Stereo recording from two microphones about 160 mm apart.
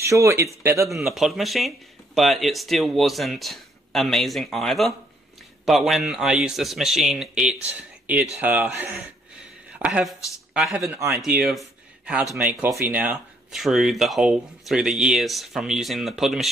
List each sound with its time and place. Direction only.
0.0 s a man's voice: 20° right (ahead or behind)
1.0 s a man's voice: centre (ahead or behind)
10.8 s speech: 20° right (ahead or behind)
11.1 s speech: 5° right (ahead or behind)